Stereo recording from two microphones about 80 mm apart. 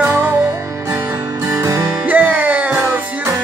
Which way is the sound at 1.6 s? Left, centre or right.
Right.